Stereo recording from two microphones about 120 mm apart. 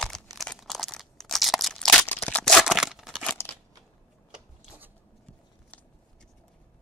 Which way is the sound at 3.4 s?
20° left (ahead or behind).